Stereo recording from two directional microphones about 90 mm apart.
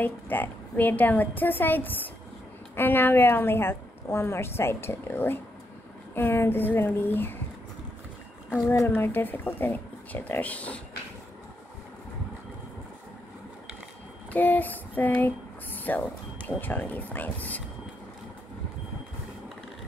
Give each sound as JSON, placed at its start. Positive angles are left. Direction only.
{"t": 0.0, "sound": "a woman's voice", "side_deg": 20}
{"t": 8.6, "sound": "a woman's voice", "side_deg": 25}
{"t": 14.3, "sound": "speech", "side_deg": 20}